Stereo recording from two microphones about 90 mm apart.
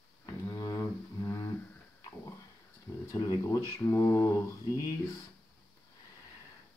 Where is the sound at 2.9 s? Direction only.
25° left (ahead or behind).